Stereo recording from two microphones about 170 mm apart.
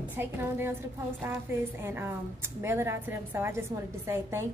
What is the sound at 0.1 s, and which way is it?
A woman's voice, 10° right (ahead or behind).